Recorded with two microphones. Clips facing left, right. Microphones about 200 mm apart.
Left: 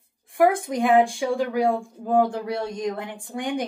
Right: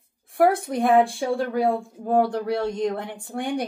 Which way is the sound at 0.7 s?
15° left (ahead or behind).